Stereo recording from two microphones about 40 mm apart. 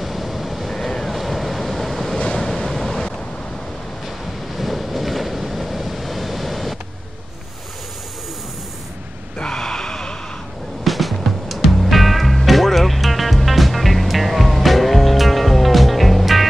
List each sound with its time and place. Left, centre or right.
0.0 s vehicle: centre
2.1 s waves: left
2.4 s waves: centre
4.6 s waves: centre
9.4 s a sound: centre
10.8 s music: centre